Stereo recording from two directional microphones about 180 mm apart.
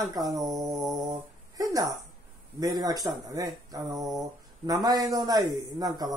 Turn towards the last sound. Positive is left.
turn(degrees=-20)  # may be behind; listen again after turning